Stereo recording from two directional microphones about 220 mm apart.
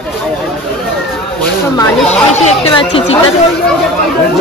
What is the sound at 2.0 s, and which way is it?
Speech, 30° left (ahead or behind).